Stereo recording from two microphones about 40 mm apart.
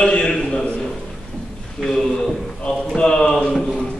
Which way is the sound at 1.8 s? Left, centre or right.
Centre.